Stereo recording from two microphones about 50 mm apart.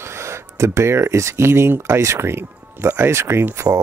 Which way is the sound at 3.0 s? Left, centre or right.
Right.